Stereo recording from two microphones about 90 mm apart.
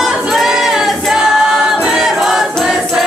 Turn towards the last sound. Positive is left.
turn(degrees=0)  # may be behind; listen again after turning